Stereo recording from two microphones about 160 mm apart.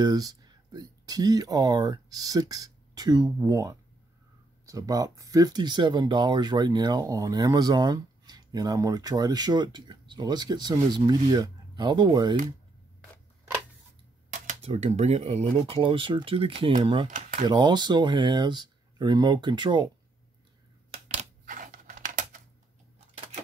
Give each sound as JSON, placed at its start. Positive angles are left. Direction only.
{"t": 0.0, "sound": "speech", "side_deg": -25}
{"t": 14.3, "sound": "speech", "side_deg": -50}
{"t": 17.1, "sound": "speech", "side_deg": -55}
{"t": 17.5, "sound": "speech", "side_deg": -25}
{"t": 20.9, "sound": "a sound", "side_deg": -40}
{"t": 21.5, "sound": "a sound", "side_deg": -55}